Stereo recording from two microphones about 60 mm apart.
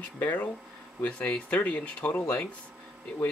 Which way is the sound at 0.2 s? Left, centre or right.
Left.